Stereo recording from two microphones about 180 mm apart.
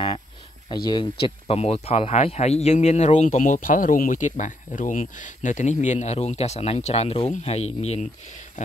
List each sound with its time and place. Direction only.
0.8 s speech: 30° left (ahead or behind)